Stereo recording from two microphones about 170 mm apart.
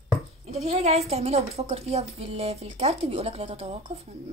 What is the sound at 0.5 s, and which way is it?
Speech, 40° right (ahead or behind).